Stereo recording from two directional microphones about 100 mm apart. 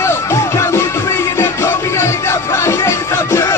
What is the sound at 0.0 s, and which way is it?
Music, 25° left (ahead or behind).